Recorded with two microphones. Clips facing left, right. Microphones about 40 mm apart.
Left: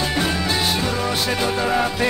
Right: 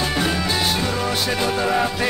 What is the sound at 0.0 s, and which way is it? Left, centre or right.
Music, centre.